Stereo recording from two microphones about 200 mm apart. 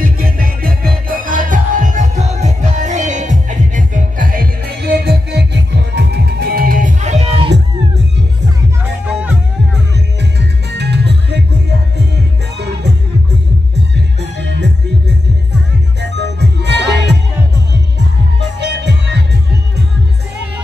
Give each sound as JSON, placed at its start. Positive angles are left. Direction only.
{"t": 0.0, "sound": "music", "side_deg": -45}
{"t": 9.0, "sound": "music", "side_deg": -5}
{"t": 10.7, "sound": "music", "side_deg": -60}
{"t": 14.2, "sound": "music", "side_deg": -60}
{"t": 18.6, "sound": "music", "side_deg": -60}